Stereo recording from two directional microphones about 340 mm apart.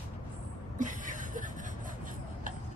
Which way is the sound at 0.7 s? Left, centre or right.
Right.